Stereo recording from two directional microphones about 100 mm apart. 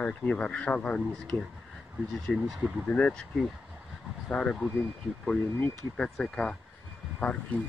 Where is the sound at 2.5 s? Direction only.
Centre (ahead or behind).